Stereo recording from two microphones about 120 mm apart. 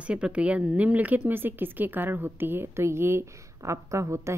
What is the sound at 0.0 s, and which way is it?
A woman's voice, 10° right (ahead or behind).